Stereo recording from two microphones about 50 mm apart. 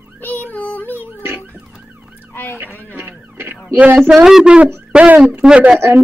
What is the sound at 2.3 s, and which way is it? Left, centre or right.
Fowl, left.